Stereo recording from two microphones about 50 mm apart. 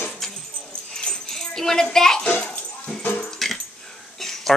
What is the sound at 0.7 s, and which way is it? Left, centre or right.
Dog, centre.